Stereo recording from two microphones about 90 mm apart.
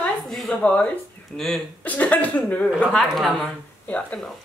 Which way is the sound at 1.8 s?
15° left (ahead or behind).